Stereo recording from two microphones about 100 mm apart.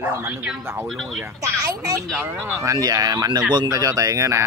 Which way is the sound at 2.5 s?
35° right (ahead or behind).